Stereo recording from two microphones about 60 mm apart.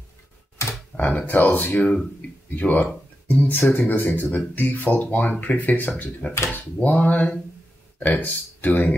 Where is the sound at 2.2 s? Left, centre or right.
Left.